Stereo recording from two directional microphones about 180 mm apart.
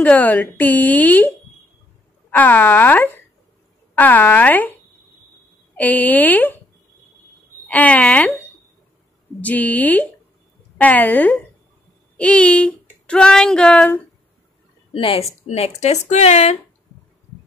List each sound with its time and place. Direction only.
0.0 s speech: 10° left (ahead or behind)
2.3 s speech: 10° left (ahead or behind)
5.8 s speech: 10° left (ahead or behind)
7.6 s speech: 5° left (ahead or behind)
9.4 s speech: 10° left (ahead or behind)
15.0 s speech: 35° left (ahead or behind)